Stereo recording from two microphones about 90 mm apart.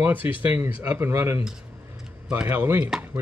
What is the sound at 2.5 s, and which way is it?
Speech, 25° right (ahead or behind).